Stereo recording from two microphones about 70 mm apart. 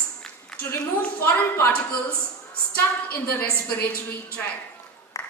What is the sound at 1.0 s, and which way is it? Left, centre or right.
Speech, left.